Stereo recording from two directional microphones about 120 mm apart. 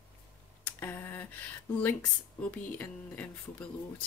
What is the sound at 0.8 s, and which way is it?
Speech, 20° left (ahead or behind).